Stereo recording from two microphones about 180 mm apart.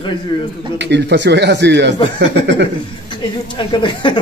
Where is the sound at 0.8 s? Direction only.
70° right (ahead or behind).